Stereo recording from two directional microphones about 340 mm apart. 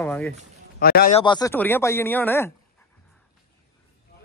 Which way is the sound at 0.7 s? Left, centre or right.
Left.